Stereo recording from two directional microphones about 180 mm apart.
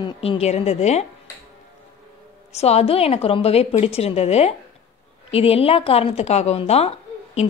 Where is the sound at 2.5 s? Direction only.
35° left (ahead or behind).